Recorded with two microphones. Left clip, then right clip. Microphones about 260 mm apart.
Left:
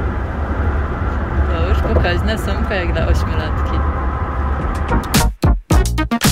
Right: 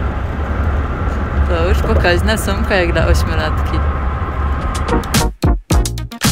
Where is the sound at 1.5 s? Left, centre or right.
Centre.